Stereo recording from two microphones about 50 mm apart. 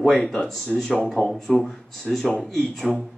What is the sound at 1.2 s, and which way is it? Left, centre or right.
Speech, centre.